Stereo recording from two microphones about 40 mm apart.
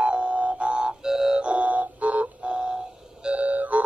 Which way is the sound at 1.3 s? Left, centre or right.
Right.